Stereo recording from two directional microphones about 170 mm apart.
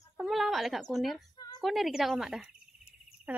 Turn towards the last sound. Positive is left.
turn(degrees=-5)  # may be behind; listen again after turning